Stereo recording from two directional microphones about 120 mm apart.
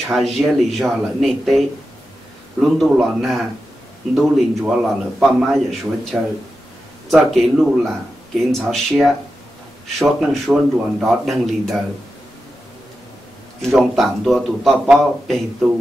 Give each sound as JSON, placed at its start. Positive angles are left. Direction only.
{"t": 0.0, "sound": "a man's voice", "side_deg": 0}
{"t": 13.6, "sound": "a man's voice", "side_deg": 0}